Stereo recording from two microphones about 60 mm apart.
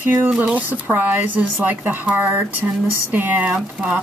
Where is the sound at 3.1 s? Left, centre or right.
Right.